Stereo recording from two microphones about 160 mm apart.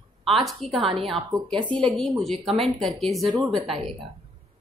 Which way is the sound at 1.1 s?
30° right (ahead or behind).